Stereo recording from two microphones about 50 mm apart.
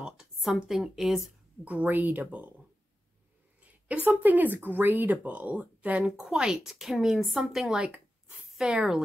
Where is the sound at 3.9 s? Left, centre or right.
Right.